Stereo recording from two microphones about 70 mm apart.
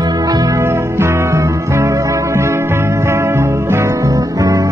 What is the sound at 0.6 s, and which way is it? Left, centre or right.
Music, right.